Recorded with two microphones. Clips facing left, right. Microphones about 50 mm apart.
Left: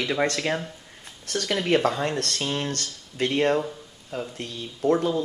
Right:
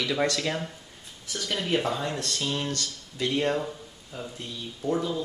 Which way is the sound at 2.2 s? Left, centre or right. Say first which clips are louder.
Left 2 dB; left.